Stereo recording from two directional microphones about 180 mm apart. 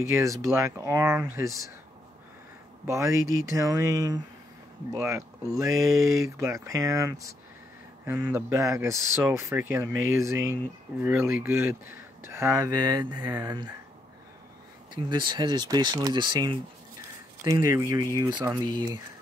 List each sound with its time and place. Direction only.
0.1 s speech: 15° right (ahead or behind)
2.9 s speech: 15° right (ahead or behind)
15.0 s speech: 25° right (ahead or behind)